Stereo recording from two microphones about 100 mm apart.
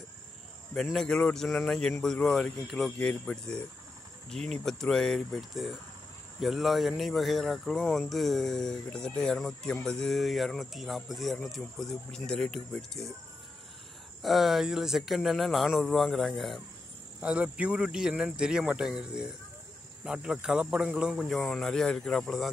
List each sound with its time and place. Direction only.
0.7 s speech: 5° left (ahead or behind)
14.2 s speech: centre (ahead or behind)
17.2 s speech: 15° right (ahead or behind)